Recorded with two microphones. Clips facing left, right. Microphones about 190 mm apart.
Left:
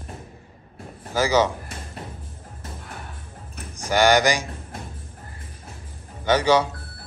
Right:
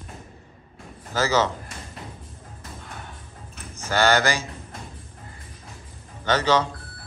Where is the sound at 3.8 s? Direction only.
15° left (ahead or behind).